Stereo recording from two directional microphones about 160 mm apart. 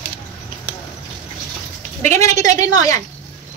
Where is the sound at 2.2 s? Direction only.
20° left (ahead or behind).